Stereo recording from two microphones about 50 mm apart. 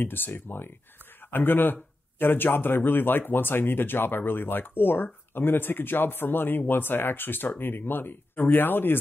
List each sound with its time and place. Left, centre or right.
0.0 s speech: left